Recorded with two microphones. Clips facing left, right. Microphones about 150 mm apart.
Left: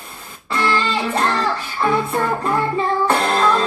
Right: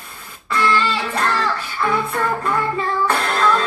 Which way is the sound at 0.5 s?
25° left (ahead or behind).